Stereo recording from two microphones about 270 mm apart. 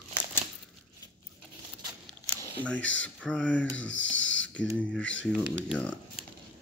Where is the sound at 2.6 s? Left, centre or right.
Centre.